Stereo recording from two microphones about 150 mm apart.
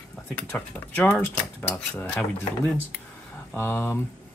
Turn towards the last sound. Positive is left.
turn(degrees=15)  # may be behind; listen again after turning